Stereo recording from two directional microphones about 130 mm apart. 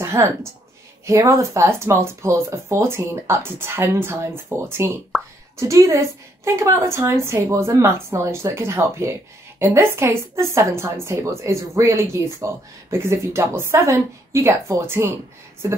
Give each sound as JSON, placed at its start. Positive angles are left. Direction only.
{"t": 0.0, "sound": "a sound", "side_deg": -20}
{"t": 1.0, "sound": "a woman's voice", "side_deg": -25}
{"t": 5.1, "sound": "speech", "side_deg": 0}
{"t": 5.6, "sound": "a woman's voice", "side_deg": -25}